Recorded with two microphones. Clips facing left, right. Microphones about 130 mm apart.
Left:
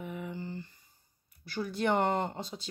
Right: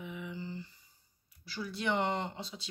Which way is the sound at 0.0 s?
45° left (ahead or behind).